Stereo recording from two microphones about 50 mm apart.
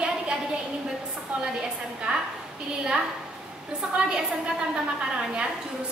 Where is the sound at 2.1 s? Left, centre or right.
Centre.